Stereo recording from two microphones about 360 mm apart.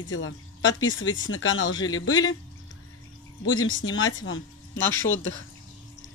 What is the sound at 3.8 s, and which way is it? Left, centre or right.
Speech, left.